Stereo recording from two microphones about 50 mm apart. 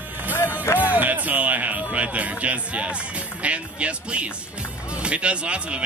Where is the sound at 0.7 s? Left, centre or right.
Right.